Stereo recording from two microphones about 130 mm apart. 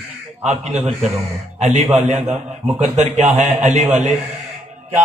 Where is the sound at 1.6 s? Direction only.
60° right (ahead or behind).